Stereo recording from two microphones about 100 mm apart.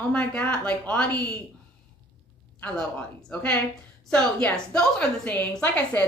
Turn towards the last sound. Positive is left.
turn(degrees=15)  # may be behind; listen again after turning